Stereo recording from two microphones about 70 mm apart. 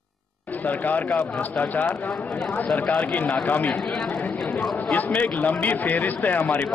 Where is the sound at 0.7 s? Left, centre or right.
Left.